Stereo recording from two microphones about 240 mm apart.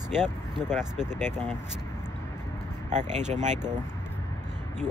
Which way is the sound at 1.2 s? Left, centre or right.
Centre.